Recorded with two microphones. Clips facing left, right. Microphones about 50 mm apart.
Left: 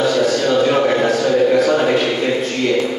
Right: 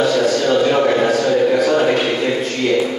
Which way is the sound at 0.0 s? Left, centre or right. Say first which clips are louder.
Even; centre.